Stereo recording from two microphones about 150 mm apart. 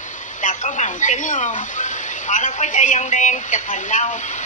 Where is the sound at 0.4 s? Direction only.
60° left (ahead or behind).